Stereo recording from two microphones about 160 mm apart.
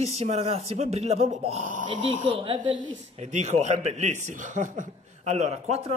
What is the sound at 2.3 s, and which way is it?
Speech, 35° right (ahead or behind).